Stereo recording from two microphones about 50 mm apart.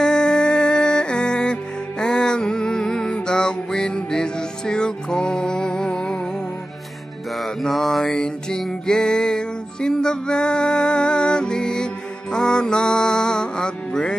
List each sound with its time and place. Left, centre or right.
0.0 s music: centre
7.3 s music: centre